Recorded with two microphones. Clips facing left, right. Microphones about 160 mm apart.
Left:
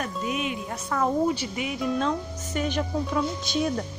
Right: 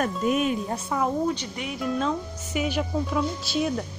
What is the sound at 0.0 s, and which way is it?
Speech, 45° right (ahead or behind).